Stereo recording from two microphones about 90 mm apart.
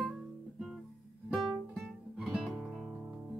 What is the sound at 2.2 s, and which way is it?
Music, centre (ahead or behind).